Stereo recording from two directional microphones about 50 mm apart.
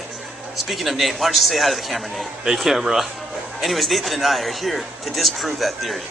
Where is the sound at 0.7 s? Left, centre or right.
Centre.